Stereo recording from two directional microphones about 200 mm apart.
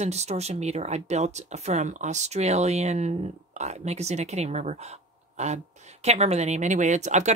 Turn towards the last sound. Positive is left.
turn(degrees=-35)  # may be behind; listen again after turning